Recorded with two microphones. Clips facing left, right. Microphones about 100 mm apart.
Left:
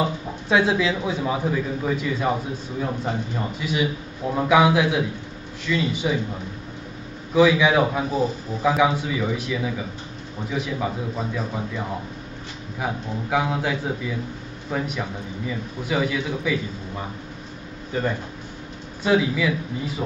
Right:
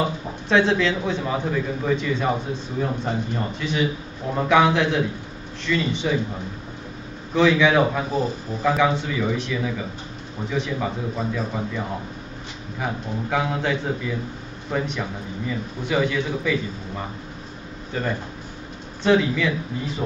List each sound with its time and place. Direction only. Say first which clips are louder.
0.5 s a man's voice: right 1 dB; 10° left (ahead or behind)
3.5 s a man's voice: even; 5° left (ahead or behind)
7.3 s a man's voice: even; 10° left (ahead or behind)
12.8 s a man's voice: even; 10° left (ahead or behind)
19.0 s a man's voice: right 1 dB; 5° left (ahead or behind)